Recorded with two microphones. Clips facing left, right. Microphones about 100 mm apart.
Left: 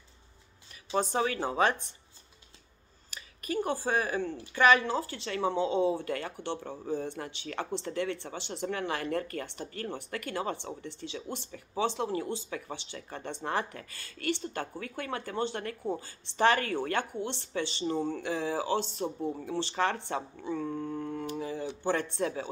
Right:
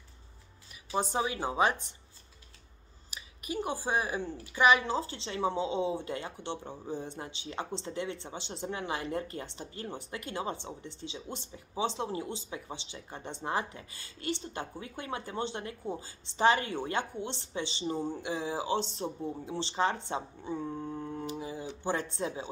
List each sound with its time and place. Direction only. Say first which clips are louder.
0.9 s speech: left 2 dB; 15° right (ahead or behind)
3.1 s speech: left 3 dB; 15° right (ahead or behind)
19.0 s speech: left 3 dB; 15° left (ahead or behind)
19.4 s speech: even; 20° right (ahead or behind)